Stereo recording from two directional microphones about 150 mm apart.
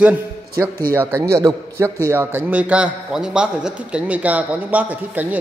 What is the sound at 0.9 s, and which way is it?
A man's voice, 15° right (ahead or behind).